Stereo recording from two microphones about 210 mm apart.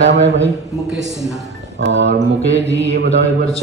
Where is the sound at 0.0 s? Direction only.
60° right (ahead or behind).